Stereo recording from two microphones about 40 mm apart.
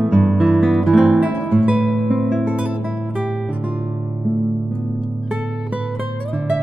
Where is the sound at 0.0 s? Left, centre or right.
Centre.